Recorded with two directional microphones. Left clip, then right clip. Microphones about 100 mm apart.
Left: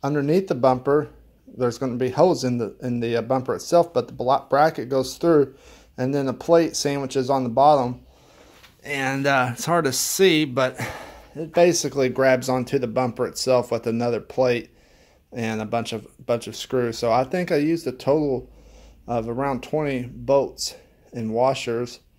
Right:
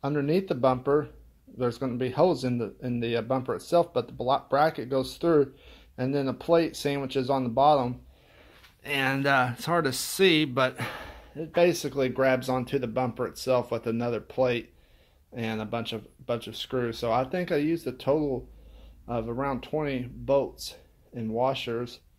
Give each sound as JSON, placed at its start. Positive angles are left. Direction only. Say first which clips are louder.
{"t": 0.0, "sound": "speech", "louder": "left 5 dB", "side_deg": 25}
{"t": 8.8, "sound": "speech", "louder": "left 2 dB", "side_deg": -5}
{"t": 9.2, "sound": "speech", "louder": "left 4 dB", "side_deg": 15}
{"t": 11.5, "sound": "speech", "louder": "left 6 dB", "side_deg": 35}